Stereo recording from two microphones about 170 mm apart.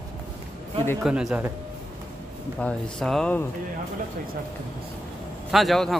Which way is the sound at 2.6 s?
5° left (ahead or behind).